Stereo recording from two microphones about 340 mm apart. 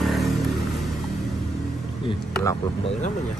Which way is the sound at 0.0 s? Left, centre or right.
Centre.